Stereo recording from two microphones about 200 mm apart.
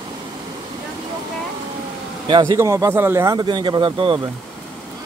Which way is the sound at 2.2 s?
20° right (ahead or behind).